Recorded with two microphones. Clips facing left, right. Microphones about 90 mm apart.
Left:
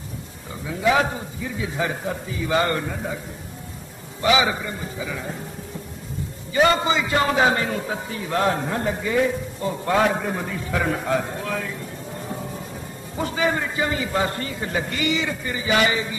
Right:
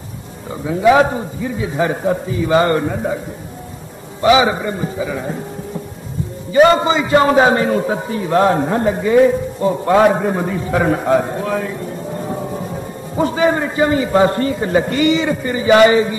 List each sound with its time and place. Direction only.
0.7 s a man's voice: 35° right (ahead or behind)
4.2 s a man's voice: 30° right (ahead or behind)
6.5 s a man's voice: 30° right (ahead or behind)
13.1 s a man's voice: 35° right (ahead or behind)